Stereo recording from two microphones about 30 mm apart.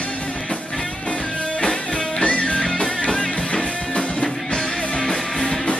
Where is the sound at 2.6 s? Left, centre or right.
Centre.